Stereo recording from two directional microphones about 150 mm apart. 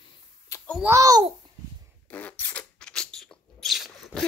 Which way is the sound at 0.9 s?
20° right (ahead or behind).